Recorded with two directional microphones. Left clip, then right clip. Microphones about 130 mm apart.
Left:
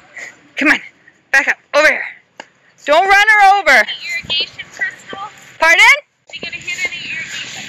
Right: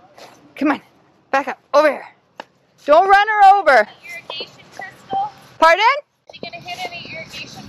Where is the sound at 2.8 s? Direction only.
45° right (ahead or behind).